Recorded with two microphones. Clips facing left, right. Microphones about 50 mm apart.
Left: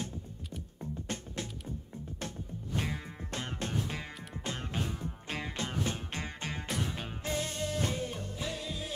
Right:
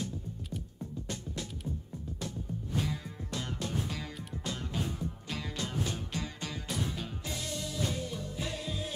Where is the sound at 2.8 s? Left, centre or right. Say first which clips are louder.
Even; left.